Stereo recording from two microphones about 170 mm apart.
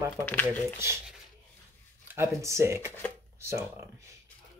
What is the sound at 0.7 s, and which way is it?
Speech, 15° right (ahead or behind).